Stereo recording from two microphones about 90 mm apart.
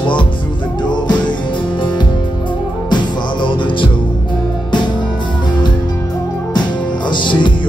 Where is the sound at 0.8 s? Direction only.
55° left (ahead or behind).